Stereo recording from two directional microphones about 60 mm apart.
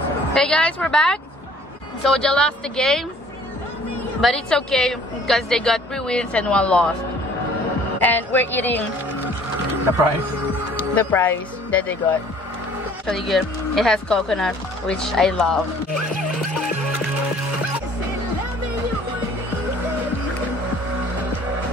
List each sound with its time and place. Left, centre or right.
0.3 s speech: centre
4.5 s speech: centre
8.0 s speech: left
10.8 s speech: left
13.0 s speech: centre